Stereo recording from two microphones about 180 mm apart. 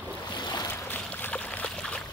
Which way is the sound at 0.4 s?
20° left (ahead or behind).